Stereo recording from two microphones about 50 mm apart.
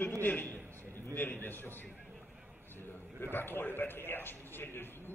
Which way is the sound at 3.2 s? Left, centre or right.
Left.